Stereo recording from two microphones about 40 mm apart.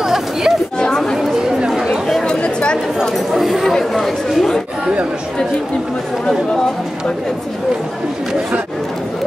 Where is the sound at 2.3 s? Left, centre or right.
Left.